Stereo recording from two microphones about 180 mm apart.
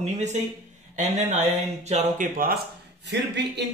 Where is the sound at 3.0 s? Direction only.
70° right (ahead or behind).